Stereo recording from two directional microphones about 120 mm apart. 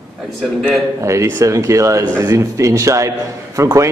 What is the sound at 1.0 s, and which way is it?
A man's voice, 25° right (ahead or behind).